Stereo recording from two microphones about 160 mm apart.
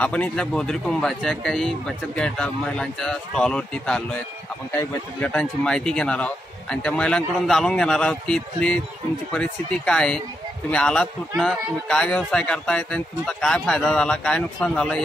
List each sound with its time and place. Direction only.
0.0 s a man's voice: 10° left (ahead or behind)